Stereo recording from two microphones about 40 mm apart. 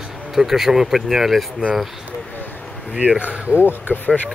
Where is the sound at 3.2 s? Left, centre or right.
Right.